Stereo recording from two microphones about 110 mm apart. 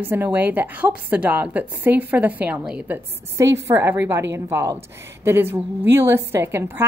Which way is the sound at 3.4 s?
25° right (ahead or behind).